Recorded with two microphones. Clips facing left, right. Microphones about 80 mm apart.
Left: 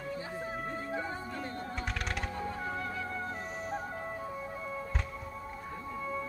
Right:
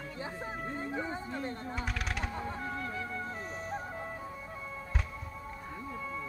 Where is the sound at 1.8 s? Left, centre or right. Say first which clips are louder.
Even; centre.